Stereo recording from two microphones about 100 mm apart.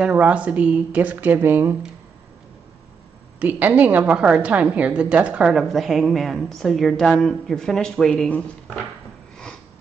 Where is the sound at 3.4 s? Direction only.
15° right (ahead or behind); by 8.3 s 5° left (ahead or behind).